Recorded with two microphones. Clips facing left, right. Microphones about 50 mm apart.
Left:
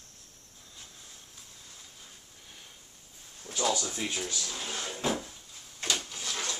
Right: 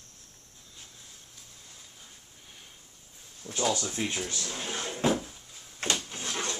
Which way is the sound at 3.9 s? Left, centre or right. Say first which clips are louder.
Right 2 dB; centre.